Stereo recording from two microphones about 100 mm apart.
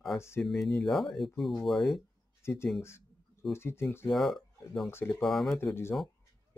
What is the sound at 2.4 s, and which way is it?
Speech, 25° left (ahead or behind).